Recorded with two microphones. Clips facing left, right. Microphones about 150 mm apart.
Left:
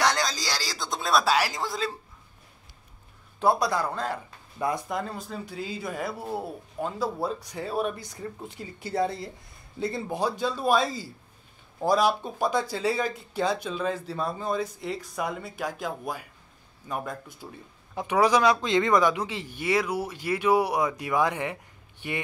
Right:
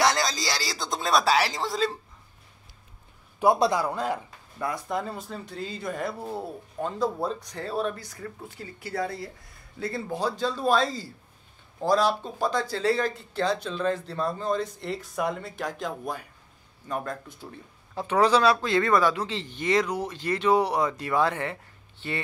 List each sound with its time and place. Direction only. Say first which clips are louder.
0.0 s a sound: right 2 dB; centre (ahead or behind)
3.4 s speech: right 2 dB; 10° right (ahead or behind)
4.8 s speech: right 1 dB; centre (ahead or behind)